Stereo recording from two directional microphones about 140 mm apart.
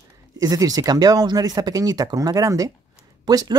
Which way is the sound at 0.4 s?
25° right (ahead or behind).